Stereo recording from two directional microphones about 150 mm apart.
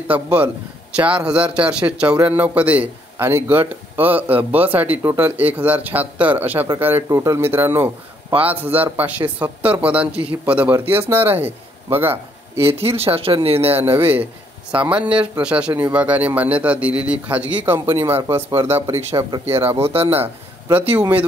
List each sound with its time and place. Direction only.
0.1 s a man's voice: 10° right (ahead or behind)
12.7 s speech: 40° right (ahead or behind)
13.7 s a man's voice: 15° right (ahead or behind)
19.4 s speech: 40° right (ahead or behind)
20.7 s a man's voice: 10° right (ahead or behind)